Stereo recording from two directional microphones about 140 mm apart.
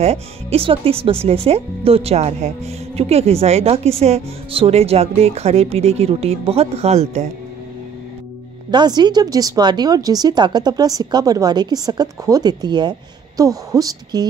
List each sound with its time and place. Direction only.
0.0 s speech: 45° right (ahead or behind)
8.6 s speech: 30° right (ahead or behind)